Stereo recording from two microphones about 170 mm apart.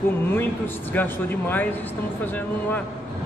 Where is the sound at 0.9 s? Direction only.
10° left (ahead or behind).